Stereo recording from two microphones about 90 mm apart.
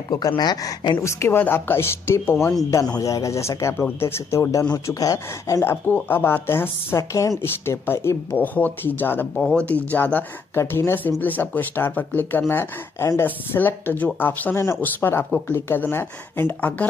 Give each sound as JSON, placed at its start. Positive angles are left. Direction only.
{"t": 0.4, "sound": "speech", "side_deg": 45}
{"t": 1.0, "sound": "speech", "side_deg": 30}
{"t": 9.4, "sound": "speech", "side_deg": 10}